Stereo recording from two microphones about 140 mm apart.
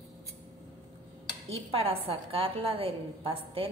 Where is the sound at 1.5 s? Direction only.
40° right (ahead or behind).